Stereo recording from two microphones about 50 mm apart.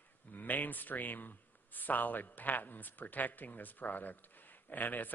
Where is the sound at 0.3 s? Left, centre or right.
Left.